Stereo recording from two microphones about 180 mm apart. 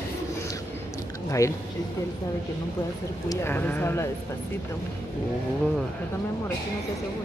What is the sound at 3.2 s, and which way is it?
Speech, 10° left (ahead or behind).